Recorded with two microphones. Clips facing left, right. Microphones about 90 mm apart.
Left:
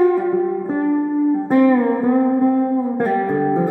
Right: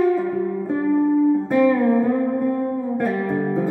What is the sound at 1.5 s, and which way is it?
Music, 35° left (ahead or behind).